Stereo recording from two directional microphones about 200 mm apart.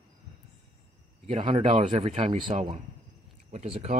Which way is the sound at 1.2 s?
30° right (ahead or behind).